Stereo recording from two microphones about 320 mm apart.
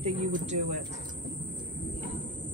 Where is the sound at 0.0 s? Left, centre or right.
Centre.